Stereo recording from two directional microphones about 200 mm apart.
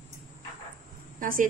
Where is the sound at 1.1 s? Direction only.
45° right (ahead or behind).